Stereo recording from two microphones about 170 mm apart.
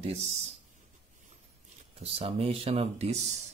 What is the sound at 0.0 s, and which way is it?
Speech, 40° right (ahead or behind).